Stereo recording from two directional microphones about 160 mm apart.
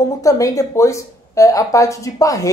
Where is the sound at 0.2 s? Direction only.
20° left (ahead or behind).